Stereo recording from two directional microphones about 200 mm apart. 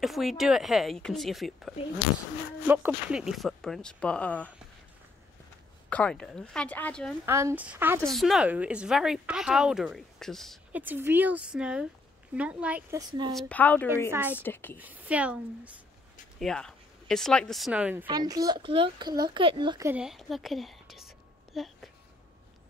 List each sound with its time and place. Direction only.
0.0 s speech: centre (ahead or behind)
2.7 s speech: 5° right (ahead or behind)
5.9 s speech: 5° left (ahead or behind)
7.2 s speech: 15° right (ahead or behind)
10.8 s speech: 10° right (ahead or behind)
13.3 s a woman's voice: 5° left (ahead or behind)
14.1 s speech: 10° right (ahead or behind)
14.4 s a woman's voice: 10° left (ahead or behind)
14.8 s speech: 10° right (ahead or behind)
18.0 s a child's voice: 20° right (ahead or behind)
19.9 s speech: 5° right (ahead or behind)
21.5 s a sound: centre (ahead or behind)